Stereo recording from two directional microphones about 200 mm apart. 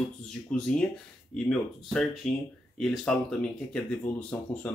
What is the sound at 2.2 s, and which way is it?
Speech, centre (ahead or behind).